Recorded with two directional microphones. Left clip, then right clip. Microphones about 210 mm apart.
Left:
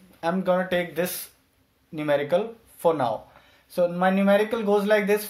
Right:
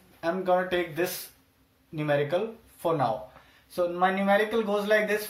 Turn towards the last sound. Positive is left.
turn(degrees=50)  # may be behind; listen again after turning